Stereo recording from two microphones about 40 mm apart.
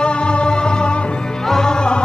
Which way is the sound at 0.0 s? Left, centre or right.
Left.